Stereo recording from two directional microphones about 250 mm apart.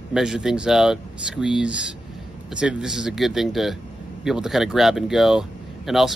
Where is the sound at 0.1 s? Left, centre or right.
Centre.